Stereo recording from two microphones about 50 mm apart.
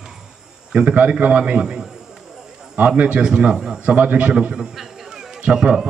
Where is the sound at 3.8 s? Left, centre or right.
Right.